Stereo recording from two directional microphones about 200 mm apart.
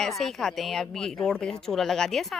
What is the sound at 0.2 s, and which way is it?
Speech, centre (ahead or behind).